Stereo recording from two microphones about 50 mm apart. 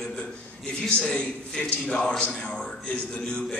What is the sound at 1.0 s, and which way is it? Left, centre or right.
A man's voice, centre.